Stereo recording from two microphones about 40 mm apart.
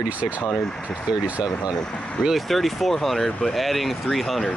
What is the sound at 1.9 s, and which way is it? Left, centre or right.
Speech, left.